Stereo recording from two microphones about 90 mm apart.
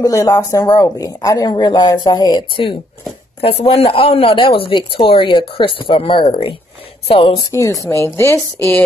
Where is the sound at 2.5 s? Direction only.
70° left (ahead or behind).